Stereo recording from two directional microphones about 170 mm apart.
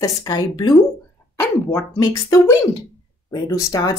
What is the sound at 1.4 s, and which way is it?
Speech, 15° left (ahead or behind).